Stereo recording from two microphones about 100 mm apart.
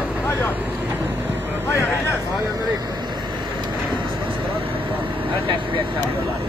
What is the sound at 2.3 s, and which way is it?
Vehicle, 45° right (ahead or behind).